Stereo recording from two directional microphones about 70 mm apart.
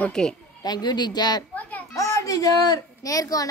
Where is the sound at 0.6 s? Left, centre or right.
Left.